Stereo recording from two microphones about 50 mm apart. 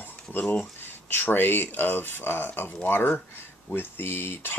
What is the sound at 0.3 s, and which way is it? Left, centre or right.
Speech, left.